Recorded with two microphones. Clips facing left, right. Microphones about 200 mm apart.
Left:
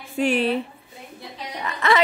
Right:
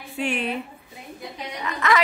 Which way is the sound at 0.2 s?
35° left (ahead or behind).